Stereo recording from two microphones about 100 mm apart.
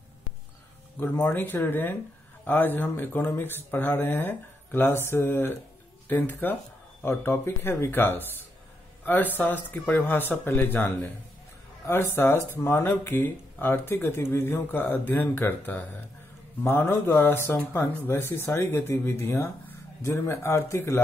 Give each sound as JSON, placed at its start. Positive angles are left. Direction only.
{"t": 0.9, "sound": "speech", "side_deg": 20}